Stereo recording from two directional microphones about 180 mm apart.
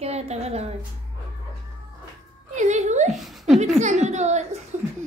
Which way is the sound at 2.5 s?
40° right (ahead or behind).